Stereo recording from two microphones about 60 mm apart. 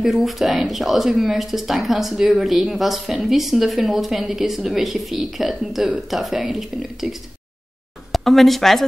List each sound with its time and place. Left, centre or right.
0.0 s speech: centre